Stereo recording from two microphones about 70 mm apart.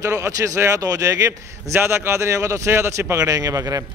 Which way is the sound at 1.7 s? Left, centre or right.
Right.